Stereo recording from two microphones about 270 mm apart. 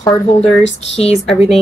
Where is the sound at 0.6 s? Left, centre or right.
Left.